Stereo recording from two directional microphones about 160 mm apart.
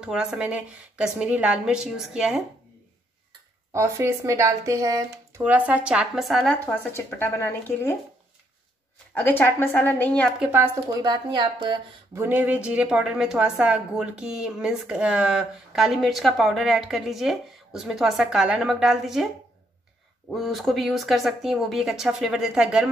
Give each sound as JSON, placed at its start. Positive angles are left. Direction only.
{"t": 0.0, "sound": "speech", "side_deg": -5}
{"t": 3.7, "sound": "speech", "side_deg": -15}
{"t": 5.4, "sound": "speech", "side_deg": -10}
{"t": 6.9, "sound": "a woman's voice", "side_deg": 15}
{"t": 9.1, "sound": "a woman's voice", "side_deg": 10}
{"t": 10.4, "sound": "speech", "side_deg": -15}
{"t": 12.2, "sound": "speech", "side_deg": -10}